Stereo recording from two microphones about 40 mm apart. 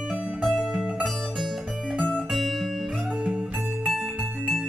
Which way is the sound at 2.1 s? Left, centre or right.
Centre.